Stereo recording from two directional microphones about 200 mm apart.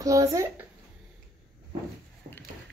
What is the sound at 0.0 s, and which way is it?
Speech, 15° right (ahead or behind).